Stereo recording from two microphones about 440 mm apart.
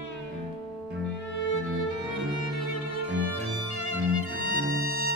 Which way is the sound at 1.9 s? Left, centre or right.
Left.